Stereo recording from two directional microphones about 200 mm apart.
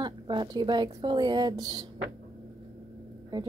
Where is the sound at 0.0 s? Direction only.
20° right (ahead or behind).